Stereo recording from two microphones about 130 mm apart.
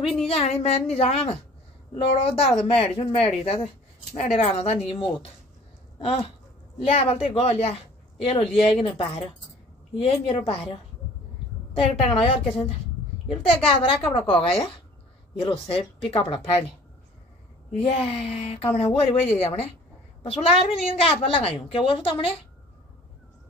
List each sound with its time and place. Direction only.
0.0 s a woman's voice: 50° left (ahead or behind)
11.7 s a woman's voice: 45° left (ahead or behind)
15.4 s a woman's voice: 45° left (ahead or behind)
17.7 s a woman's voice: 50° left (ahead or behind)